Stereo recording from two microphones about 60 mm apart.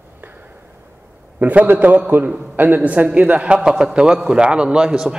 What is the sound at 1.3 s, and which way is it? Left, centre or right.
A man's voice, right.